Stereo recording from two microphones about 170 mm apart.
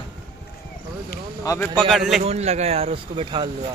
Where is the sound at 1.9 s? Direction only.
Centre (ahead or behind).